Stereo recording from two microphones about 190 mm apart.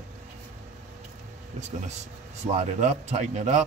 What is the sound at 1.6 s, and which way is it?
Speech, 35° right (ahead or behind).